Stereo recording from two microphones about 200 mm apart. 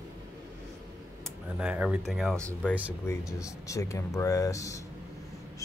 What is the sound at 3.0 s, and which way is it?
Speech, 15° left (ahead or behind).